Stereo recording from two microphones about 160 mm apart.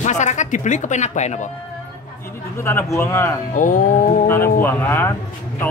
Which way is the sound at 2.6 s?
15° left (ahead or behind).